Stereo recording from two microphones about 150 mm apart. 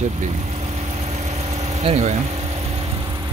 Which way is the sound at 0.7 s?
50° right (ahead or behind).